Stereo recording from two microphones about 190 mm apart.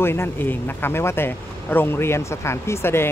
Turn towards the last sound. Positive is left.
turn(degrees=10)  # may be behind; listen again after turning